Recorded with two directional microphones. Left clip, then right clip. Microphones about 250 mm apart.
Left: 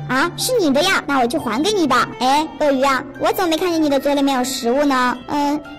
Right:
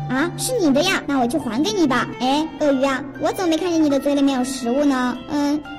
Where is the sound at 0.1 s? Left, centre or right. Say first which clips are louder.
Left 5 dB; centre.